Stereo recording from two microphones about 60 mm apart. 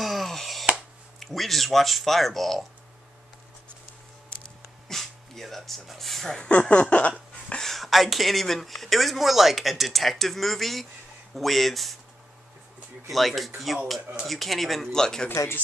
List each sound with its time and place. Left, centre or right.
0.0 s a sound: centre
1.2 s speech: centre
4.8 s speech: centre
6.5 s a sound: left
7.6 s speech: centre
13.1 s speech: centre